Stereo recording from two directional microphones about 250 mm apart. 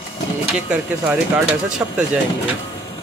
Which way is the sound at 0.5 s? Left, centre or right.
Centre.